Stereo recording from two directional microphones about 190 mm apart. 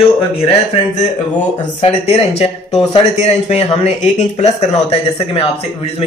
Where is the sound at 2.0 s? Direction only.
35° left (ahead or behind).